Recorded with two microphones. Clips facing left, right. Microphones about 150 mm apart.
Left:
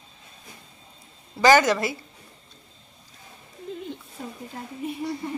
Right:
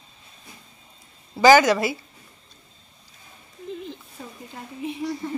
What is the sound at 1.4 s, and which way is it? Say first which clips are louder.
Speech: right 3 dB; 5° right (ahead or behind).